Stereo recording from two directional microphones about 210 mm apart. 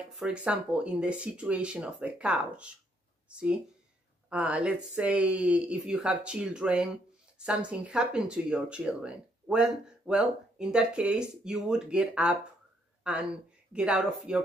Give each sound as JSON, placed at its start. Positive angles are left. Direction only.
{"t": 0.1, "sound": "speech", "side_deg": -5}